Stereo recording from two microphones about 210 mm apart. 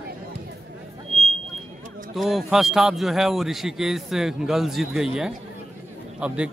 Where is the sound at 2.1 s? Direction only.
Centre (ahead or behind).